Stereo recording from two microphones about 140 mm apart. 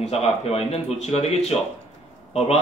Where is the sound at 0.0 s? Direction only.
45° left (ahead or behind).